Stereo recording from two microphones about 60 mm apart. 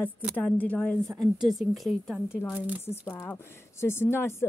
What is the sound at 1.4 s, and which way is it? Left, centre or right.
Speech, centre.